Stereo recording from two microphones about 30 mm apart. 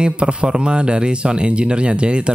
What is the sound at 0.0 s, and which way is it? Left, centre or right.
Speech, right.